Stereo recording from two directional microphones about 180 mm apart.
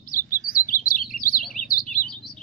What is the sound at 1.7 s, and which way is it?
Bird, 50° left (ahead or behind).